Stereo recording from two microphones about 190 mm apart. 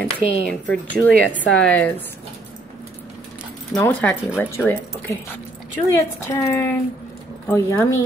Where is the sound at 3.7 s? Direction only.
5° left (ahead or behind).